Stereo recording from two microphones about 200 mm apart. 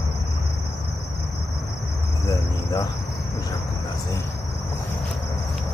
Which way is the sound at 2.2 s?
15° left (ahead or behind).